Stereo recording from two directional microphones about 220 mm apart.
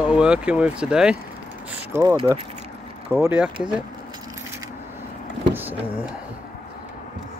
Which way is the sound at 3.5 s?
20° right (ahead or behind).